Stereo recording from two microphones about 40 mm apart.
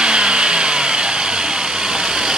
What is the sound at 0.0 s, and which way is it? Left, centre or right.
Vehicle, right.